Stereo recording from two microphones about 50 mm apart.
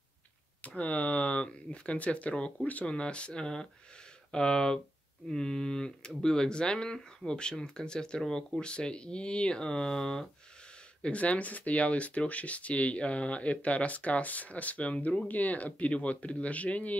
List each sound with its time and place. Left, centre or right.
0.6 s speech: left; by 10.2 s centre
11.0 s speech: left